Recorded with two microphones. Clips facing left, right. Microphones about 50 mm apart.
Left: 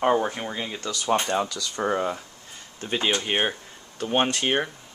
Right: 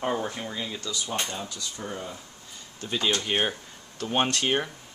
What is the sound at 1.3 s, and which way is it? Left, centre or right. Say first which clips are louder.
Speech: left 10 dB; left.